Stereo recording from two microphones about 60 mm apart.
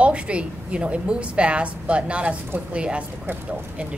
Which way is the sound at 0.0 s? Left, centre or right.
Centre.